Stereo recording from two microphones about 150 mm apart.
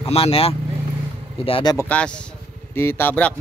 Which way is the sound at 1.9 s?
5° left (ahead or behind).